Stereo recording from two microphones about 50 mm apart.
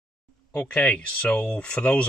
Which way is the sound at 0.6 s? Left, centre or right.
Left.